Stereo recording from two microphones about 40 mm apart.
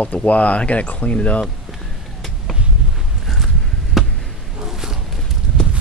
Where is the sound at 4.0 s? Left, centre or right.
Centre.